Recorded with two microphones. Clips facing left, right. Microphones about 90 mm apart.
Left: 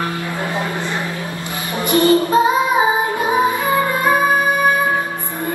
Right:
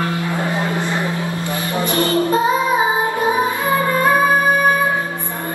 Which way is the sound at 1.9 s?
20° left (ahead or behind).